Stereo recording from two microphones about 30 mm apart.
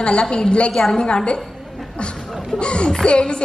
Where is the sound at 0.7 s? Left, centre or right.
Centre.